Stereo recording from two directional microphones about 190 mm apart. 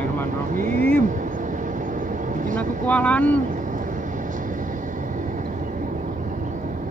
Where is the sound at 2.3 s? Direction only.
45° right (ahead or behind).